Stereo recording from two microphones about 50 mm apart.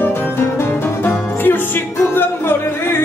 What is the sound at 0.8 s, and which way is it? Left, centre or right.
Music, left.